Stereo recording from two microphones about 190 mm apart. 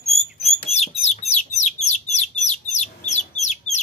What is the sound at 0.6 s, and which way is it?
Bird, 35° left (ahead or behind).